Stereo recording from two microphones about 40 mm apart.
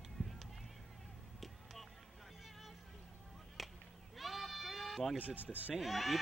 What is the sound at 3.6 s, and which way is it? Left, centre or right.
Whip, centre.